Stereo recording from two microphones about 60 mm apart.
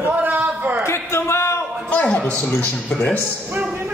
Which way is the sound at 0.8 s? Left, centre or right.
Left.